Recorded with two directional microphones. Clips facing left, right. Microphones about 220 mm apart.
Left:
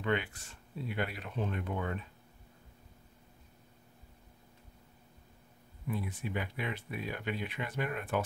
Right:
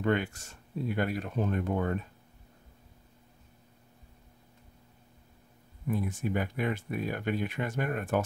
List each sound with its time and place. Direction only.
0.0 s speech: 45° right (ahead or behind)
5.9 s speech: 45° right (ahead or behind)